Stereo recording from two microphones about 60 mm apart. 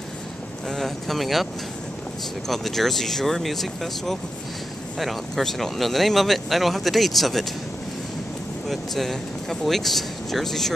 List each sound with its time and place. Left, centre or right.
0.7 s speech: centre
8.6 s speech: centre